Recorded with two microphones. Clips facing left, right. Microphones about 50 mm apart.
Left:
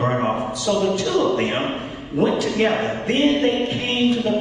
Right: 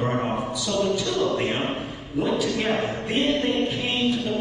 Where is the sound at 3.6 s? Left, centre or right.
Left.